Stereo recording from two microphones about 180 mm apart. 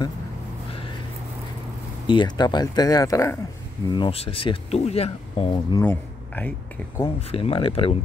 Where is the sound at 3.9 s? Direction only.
30° left (ahead or behind).